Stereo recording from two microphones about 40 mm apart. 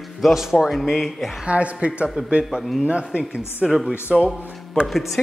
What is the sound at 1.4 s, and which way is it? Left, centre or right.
Speech, right.